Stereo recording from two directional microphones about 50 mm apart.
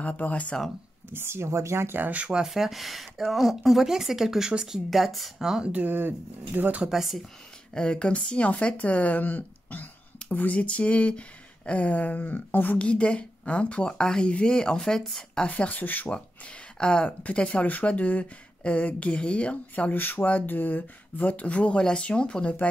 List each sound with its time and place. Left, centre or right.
0.0 s speech: left
1.1 s speech: right
2.0 s speech: right
2.4 s speech: centre
4.9 s speech: centre
5.4 s speech: centre
5.9 s speech: right
6.8 s speech: centre
7.7 s speech: centre; by 12.7 s left
12.7 s speech: left
15.5 s speech: left
16.8 s speech: centre